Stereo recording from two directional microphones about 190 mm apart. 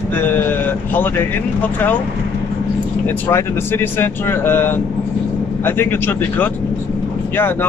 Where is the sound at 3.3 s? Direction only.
10° left (ahead or behind).